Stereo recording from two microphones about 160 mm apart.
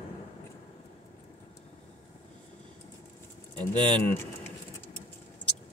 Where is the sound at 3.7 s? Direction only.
30° right (ahead or behind).